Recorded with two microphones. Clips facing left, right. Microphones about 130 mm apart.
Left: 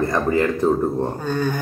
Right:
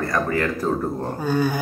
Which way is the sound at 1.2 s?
10° right (ahead or behind).